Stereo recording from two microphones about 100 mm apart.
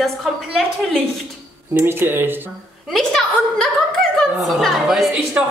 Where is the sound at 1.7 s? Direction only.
20° right (ahead or behind).